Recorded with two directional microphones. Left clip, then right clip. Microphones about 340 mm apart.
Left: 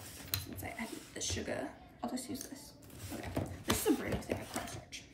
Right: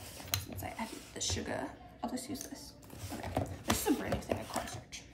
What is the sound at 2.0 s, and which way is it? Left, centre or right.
Speech, centre.